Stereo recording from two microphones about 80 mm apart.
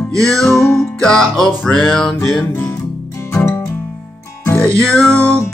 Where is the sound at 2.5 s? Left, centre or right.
Left.